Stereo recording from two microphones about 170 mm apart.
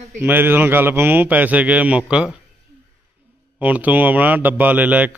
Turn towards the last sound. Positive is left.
turn(degrees=-10)  # may be behind; listen again after turning